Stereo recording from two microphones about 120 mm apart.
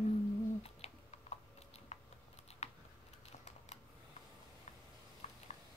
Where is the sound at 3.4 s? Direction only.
70° left (ahead or behind).